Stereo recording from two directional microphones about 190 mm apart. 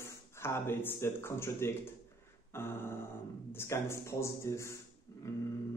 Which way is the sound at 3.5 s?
15° left (ahead or behind).